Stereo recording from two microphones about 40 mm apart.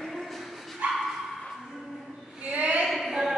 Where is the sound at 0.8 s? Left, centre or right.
Right.